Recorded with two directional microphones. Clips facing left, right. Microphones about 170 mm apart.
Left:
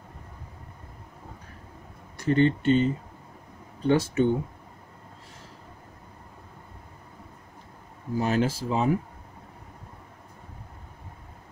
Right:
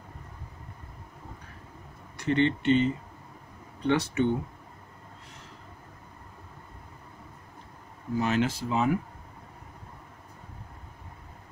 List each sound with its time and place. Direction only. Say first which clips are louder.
2.2 s speech: left 3 dB; 40° left (ahead or behind)
8.2 s speech: left 2 dB; 40° left (ahead or behind)